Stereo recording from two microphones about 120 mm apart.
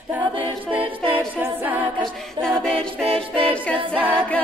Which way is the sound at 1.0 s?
15° right (ahead or behind).